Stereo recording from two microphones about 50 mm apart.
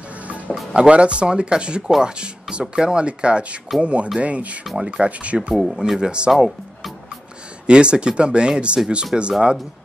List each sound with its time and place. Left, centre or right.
0.7 s speech: right
1.8 s speech: centre; by 5.5 s right
5.5 s speech: centre
5.9 s speech: centre
7.6 s speech: right